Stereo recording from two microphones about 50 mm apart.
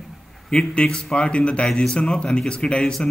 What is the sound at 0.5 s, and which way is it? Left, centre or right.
A man's voice, centre.